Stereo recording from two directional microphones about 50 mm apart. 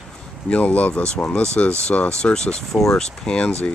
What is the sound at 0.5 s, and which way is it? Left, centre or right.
Speech, left.